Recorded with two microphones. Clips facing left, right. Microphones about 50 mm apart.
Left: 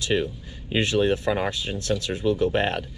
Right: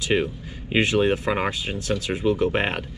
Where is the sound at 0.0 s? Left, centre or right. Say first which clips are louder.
Right 2 dB; right.